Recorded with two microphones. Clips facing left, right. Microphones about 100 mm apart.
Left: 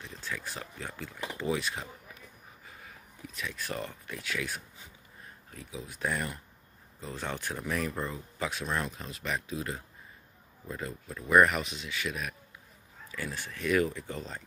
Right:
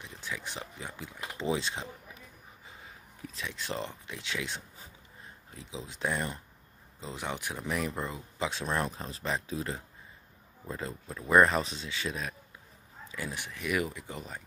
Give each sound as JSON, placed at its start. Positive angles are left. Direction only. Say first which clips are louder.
{"t": 0.0, "sound": "speech", "louder": "left 1 dB", "side_deg": -15}
{"t": 2.6, "sound": "a sound", "louder": "even", "side_deg": -25}
{"t": 3.3, "sound": "speech", "louder": "even", "side_deg": -25}